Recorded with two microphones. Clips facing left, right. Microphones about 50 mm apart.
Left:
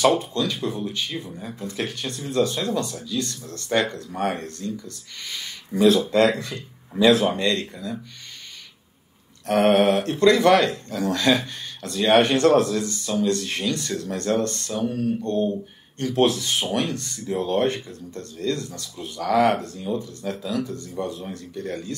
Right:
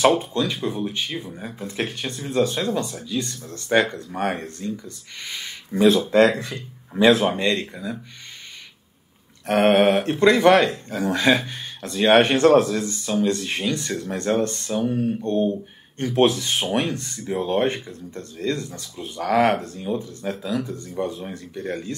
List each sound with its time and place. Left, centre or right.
0.2 s speech: centre
3.1 s speech: right
9.5 s speech: right
12.4 s speech: centre
13.2 s speech: centre